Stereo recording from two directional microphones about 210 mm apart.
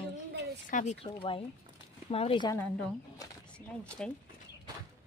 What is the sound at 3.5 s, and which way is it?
Speech, 5° left (ahead or behind).